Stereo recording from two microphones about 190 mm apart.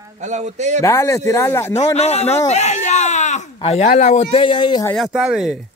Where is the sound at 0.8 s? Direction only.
15° left (ahead or behind).